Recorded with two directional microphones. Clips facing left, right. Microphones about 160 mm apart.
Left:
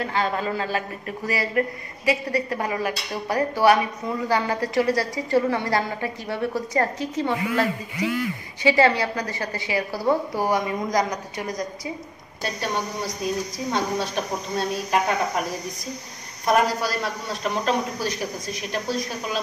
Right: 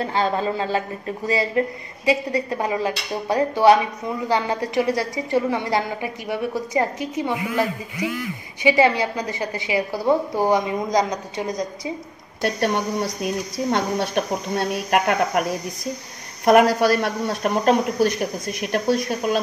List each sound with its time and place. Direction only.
0.0 s a woman's voice: 30° right (ahead or behind)
12.4 s a woman's voice: 65° right (ahead or behind)
16.4 s a woman's voice: 65° right (ahead or behind)